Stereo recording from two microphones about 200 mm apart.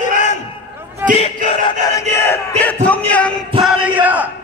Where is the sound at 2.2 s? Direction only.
10° left (ahead or behind).